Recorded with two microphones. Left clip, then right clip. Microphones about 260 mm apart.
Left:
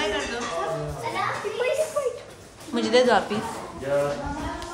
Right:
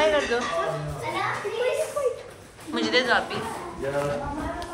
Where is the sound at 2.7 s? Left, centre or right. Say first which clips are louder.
Left 3 dB; left.